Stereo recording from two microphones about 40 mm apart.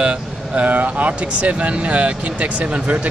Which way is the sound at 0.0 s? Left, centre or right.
Right.